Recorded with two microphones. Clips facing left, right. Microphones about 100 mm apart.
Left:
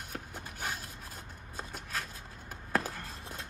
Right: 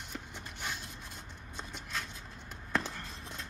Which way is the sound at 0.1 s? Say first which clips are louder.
Left 1 dB; 45° left (ahead or behind).